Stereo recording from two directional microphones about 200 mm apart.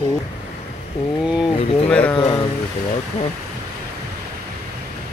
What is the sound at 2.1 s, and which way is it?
Speech, 25° left (ahead or behind).